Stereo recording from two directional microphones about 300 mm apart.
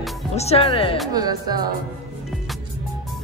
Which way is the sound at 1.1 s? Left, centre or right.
Centre.